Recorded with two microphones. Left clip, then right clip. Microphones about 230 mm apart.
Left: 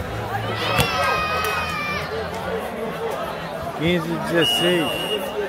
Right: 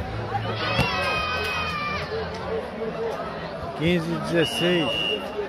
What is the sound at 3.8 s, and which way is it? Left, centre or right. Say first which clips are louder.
Speech: left 2 dB; centre.